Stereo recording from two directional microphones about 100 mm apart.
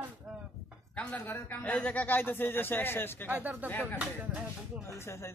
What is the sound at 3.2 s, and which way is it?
Speech, 15° right (ahead or behind).